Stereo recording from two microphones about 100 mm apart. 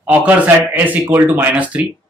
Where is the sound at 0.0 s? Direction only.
15° right (ahead or behind).